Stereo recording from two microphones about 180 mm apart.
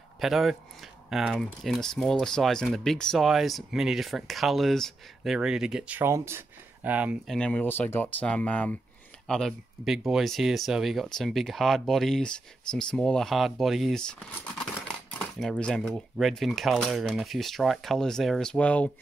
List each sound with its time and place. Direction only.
0.2 s speech: centre (ahead or behind)
7.3 s speech: 5° left (ahead or behind)